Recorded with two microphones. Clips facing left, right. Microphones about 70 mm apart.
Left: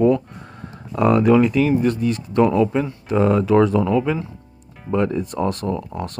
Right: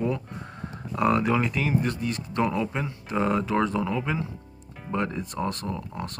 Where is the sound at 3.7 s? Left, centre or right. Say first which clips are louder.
Left 8 dB; left.